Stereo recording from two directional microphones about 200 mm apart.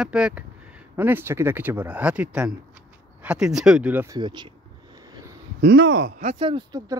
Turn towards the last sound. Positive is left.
turn(degrees=-20)  # may be behind; listen again after turning